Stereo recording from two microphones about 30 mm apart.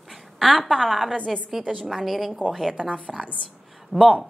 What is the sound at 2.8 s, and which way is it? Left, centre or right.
A woman's voice, right.